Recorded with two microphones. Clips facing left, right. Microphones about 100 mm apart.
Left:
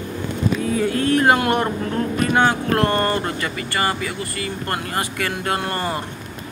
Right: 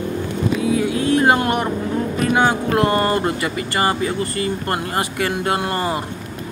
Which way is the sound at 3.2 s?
20° right (ahead or behind).